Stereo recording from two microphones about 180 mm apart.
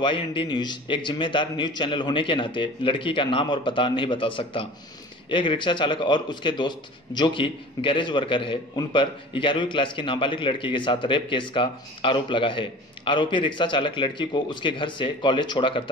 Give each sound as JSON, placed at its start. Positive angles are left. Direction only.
{"t": 0.0, "sound": "a man's voice", "side_deg": 25}